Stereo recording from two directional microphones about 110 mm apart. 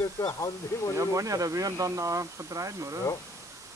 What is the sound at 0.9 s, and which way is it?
Speech, 30° right (ahead or behind).